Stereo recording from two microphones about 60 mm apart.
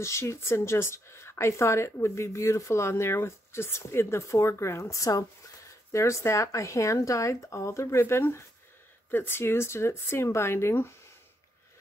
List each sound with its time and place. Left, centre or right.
0.0 s speech: left
5.9 s speech: left